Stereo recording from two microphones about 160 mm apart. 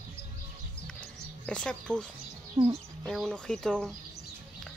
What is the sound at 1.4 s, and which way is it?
Speech, 5° left (ahead or behind).